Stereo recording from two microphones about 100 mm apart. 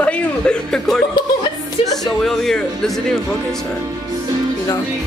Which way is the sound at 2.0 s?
5° left (ahead or behind).